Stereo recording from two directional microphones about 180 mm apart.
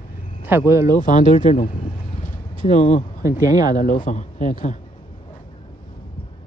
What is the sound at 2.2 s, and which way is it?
Vehicle, 45° left (ahead or behind).